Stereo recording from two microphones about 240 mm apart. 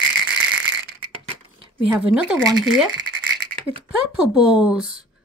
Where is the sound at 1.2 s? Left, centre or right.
Right.